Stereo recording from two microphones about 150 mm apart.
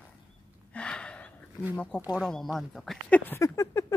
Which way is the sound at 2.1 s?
5° left (ahead or behind).